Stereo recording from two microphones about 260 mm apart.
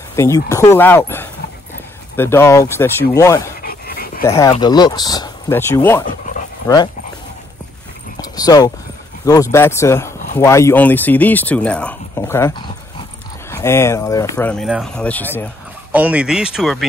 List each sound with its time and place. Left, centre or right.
0.1 s speech: centre
3.6 s dog: left
4.2 s speech: centre
6.0 s dog: left
6.7 s speech: centre
8.2 s speech: centre